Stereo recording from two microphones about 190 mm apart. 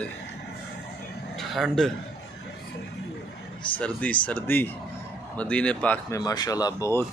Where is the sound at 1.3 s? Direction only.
Centre (ahead or behind).